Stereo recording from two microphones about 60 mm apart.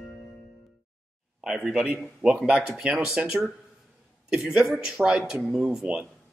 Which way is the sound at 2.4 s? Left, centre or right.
Centre.